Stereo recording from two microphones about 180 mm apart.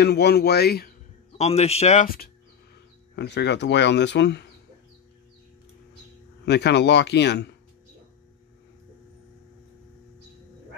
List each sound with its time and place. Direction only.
0.0 s speech: 65° left (ahead or behind)
1.4 s a man's voice: 35° left (ahead or behind)
2.0 s speech: 55° left (ahead or behind)
3.2 s speech: 70° left (ahead or behind)
6.4 s speech: 70° left (ahead or behind)